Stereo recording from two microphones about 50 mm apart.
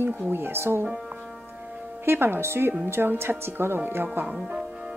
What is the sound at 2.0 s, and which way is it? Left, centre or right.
Speech, right.